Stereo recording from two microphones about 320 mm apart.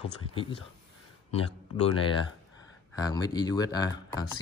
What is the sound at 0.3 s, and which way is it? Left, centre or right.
Speech, centre.